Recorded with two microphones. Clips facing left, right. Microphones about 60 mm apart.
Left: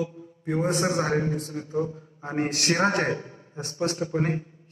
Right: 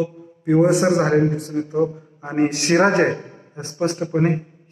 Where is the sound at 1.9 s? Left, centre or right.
Right.